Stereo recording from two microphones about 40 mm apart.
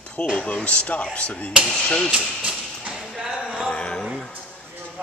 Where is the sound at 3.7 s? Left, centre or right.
Left.